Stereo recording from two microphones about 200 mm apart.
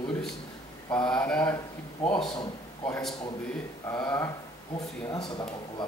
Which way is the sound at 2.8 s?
5° left (ahead or behind).